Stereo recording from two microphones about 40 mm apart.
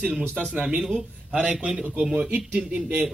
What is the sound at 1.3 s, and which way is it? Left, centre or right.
A man's voice, right.